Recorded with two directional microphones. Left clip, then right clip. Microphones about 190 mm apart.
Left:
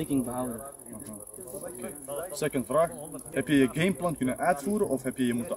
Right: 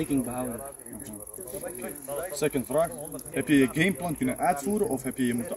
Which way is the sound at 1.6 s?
45° right (ahead or behind).